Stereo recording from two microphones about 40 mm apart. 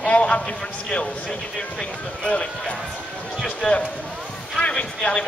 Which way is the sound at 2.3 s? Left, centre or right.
Left.